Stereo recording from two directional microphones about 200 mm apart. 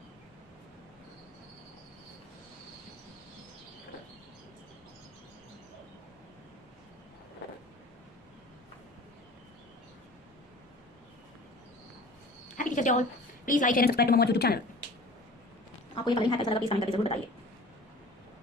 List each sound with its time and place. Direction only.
12.5 s a sound: 40° left (ahead or behind)
13.5 s a woman's voice: 40° left (ahead or behind)
15.9 s a woman's voice: 25° left (ahead or behind)